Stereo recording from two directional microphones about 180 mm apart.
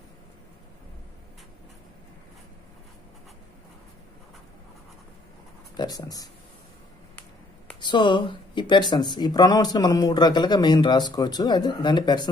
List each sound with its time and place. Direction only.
5.8 s speech: 20° left (ahead or behind)
7.8 s speech: 25° left (ahead or behind)